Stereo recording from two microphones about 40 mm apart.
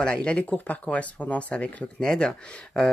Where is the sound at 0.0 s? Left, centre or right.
Left.